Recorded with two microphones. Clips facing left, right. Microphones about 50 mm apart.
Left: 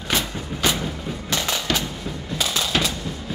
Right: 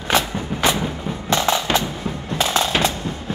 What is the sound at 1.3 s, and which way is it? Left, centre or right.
Music, right.